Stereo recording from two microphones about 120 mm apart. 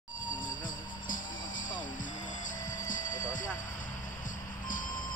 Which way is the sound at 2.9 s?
90° left.